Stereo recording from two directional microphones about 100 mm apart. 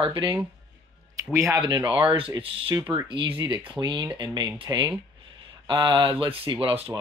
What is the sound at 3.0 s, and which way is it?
Speech, 55° right (ahead or behind).